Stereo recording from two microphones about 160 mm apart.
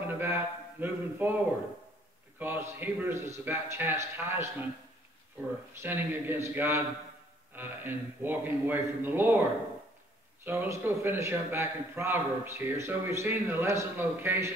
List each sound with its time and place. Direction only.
0.1 s a sound: 15° right (ahead or behind)
2.3 s a man's voice: 15° right (ahead or behind)
5.8 s a man's voice: 15° right (ahead or behind)
10.4 s a man's voice: 15° right (ahead or behind)